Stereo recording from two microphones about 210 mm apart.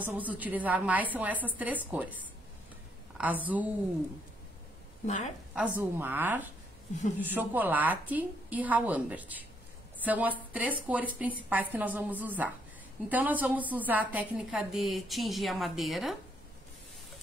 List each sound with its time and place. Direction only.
0.0 s a woman's voice: 10° right (ahead or behind)
5.0 s a woman's voice: 35° left (ahead or behind)
5.5 s a woman's voice: 5° right (ahead or behind)